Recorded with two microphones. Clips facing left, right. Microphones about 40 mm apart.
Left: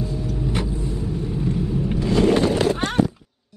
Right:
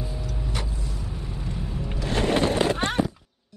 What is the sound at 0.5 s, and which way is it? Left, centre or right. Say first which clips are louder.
Vehicle: left 8 dB; left.